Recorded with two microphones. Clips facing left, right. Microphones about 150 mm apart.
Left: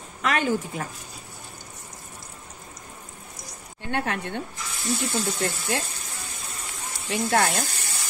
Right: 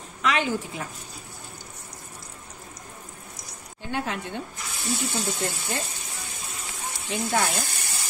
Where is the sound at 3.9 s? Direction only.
60° left (ahead or behind).